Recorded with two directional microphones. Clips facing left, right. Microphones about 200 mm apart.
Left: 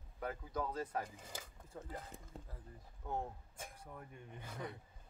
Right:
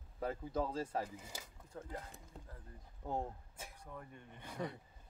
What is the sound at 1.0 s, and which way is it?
Speech, 10° right (ahead or behind).